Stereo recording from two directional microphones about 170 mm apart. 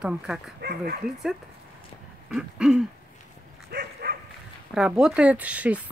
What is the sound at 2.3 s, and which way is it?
Speech, 5° right (ahead or behind).